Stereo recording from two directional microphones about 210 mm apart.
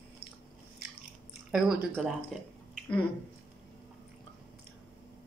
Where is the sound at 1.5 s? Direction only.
Centre (ahead or behind).